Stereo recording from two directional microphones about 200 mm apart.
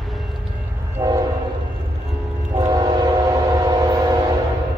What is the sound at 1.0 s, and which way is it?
Train, 15° right (ahead or behind).